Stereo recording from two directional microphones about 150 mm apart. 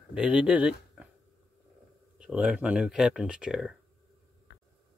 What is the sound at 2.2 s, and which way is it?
Speech, 5° right (ahead or behind).